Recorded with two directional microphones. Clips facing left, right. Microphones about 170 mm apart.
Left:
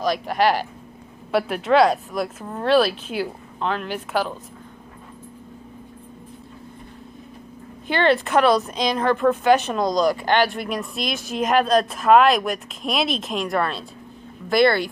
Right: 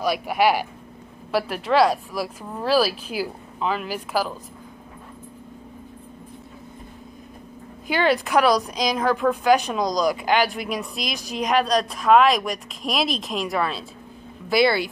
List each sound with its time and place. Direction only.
0.0 s speech: 10° right (ahead or behind)
7.9 s speech: 5° right (ahead or behind)